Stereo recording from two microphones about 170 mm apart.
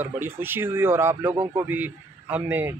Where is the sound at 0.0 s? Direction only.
10° right (ahead or behind).